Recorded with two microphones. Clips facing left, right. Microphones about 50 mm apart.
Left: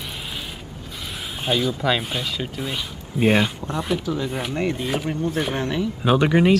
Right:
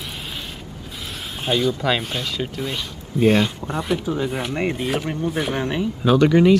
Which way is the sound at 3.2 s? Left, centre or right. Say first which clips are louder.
Right 2 dB; centre.